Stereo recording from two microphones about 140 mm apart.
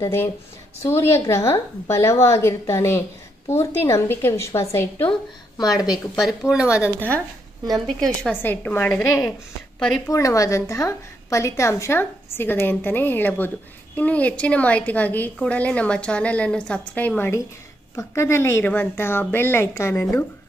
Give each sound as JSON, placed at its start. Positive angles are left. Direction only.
{"t": 0.0, "sound": "a woman's voice", "side_deg": 15}
{"t": 6.1, "sound": "speech", "side_deg": -5}
{"t": 6.7, "sound": "a woman's voice", "side_deg": 15}
{"t": 7.6, "sound": "speech", "side_deg": 0}
{"t": 8.4, "sound": "a woman's voice", "side_deg": 15}
{"t": 9.8, "sound": "a woman's voice", "side_deg": 5}
{"t": 10.0, "sound": "a woman's voice", "side_deg": 25}